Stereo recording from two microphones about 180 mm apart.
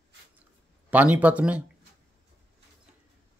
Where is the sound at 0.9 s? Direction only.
10° right (ahead or behind).